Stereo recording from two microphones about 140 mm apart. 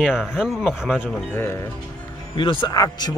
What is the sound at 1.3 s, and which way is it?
Speech, 15° left (ahead or behind).